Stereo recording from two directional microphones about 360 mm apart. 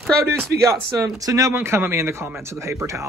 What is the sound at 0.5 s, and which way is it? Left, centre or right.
Speech, right.